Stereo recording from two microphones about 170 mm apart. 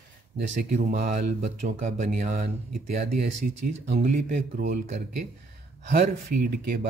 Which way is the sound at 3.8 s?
55° right (ahead or behind).